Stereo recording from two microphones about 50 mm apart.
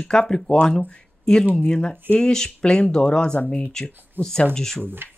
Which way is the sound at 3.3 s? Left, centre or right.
Left.